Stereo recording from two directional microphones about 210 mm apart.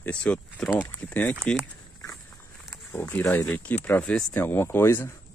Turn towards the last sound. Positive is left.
turn(degrees=10)  # may be behind; listen again after turning